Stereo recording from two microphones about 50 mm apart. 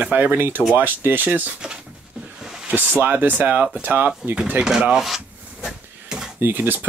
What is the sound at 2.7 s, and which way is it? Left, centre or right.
Speech, right.